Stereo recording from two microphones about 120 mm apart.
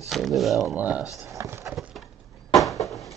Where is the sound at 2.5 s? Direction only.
Centre (ahead or behind).